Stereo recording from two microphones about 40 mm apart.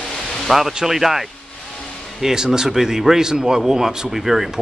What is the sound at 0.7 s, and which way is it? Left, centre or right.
Speech, centre.